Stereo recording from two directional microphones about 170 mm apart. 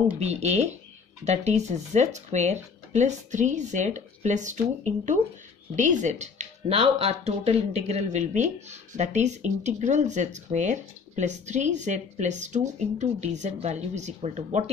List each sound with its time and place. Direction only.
0.2 s speech: 40° right (ahead or behind)